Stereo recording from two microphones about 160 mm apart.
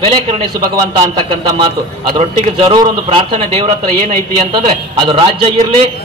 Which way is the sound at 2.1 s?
30° right (ahead or behind).